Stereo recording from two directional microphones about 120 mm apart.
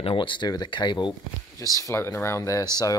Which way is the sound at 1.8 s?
25° left (ahead or behind).